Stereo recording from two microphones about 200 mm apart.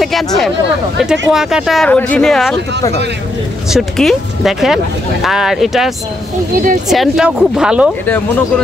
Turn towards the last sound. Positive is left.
turn(degrees=-5)  # may be behind; listen again after turning